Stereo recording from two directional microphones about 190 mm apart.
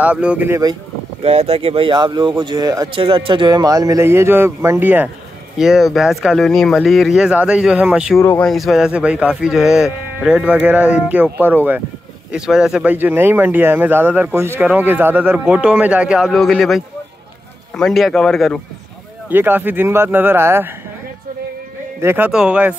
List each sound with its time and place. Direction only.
0.0 s speech: 5° right (ahead or behind)
1.2 s speech: 30° right (ahead or behind); by 8.2 s 5° right (ahead or behind)
8.2 s speech: 10° left (ahead or behind)
8.5 s speech: centre (ahead or behind)
19.2 s speech: 10° right (ahead or behind)
22.0 s speech: 10° right (ahead or behind)